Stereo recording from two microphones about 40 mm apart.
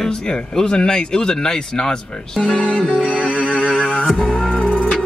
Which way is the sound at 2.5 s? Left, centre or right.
Left.